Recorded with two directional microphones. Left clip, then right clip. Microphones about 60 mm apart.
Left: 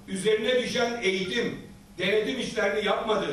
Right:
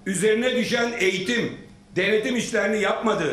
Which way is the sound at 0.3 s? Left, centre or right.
Right.